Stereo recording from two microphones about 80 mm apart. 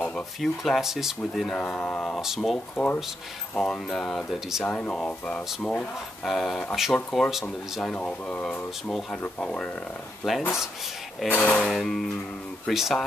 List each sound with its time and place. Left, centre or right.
0.4 s speech: centre
1.6 s speech: centre
2.2 s speech: centre
2.7 s speech: centre
4.3 s speech: centre
4.6 s speech: centre
6.2 s speech: centre
7.8 s speech: centre
10.2 s speech: centre
11.2 s speech: centre
11.7 s speech: centre